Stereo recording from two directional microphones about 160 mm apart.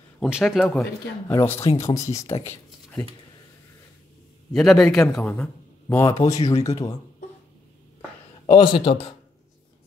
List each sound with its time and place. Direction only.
0.2 s a man's voice: centre (ahead or behind)
1.3 s speech: 15° left (ahead or behind)
2.4 s a sound: 15° left (ahead or behind)
4.6 s a man's voice: 5° left (ahead or behind); by 6.5 s 20° left (ahead or behind)
8.5 s a man's voice: 30° left (ahead or behind)